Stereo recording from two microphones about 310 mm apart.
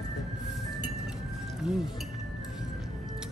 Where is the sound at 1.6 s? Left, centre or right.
Centre.